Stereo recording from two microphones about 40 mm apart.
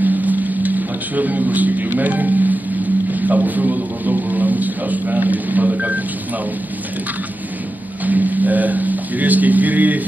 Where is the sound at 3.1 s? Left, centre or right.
Right.